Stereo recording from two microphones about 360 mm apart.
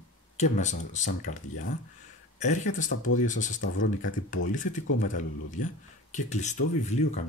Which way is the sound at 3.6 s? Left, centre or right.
Left.